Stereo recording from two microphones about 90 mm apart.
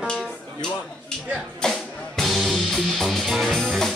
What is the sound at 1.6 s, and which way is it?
Music, 5° left (ahead or behind).